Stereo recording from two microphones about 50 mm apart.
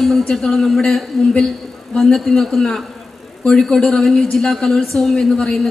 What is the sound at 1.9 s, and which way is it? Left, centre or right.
A woman's voice, centre.